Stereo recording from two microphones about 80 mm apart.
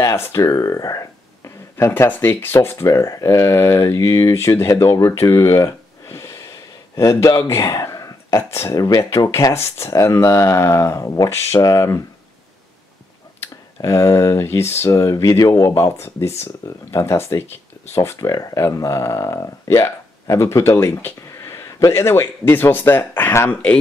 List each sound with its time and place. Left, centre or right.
0.0 s speech: left
1.8 s speech: left
6.0 s a sound: left
7.0 s speech: left
8.7 s speech: left
9.5 s speech: left
11.6 s speech: left
13.7 s speech: left
14.9 s speech: left
18.3 s speech: left; by 23.8 s centre